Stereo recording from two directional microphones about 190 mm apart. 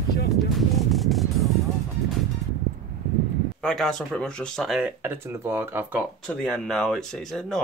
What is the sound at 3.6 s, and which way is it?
Speech, 5° left (ahead or behind).